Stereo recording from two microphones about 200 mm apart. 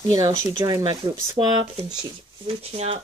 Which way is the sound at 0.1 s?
20° right (ahead or behind).